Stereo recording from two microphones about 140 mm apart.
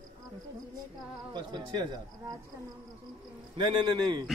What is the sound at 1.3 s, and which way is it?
Speech, 35° right (ahead or behind).